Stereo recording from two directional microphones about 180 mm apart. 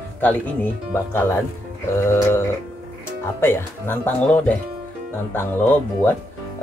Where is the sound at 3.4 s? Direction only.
15° left (ahead or behind).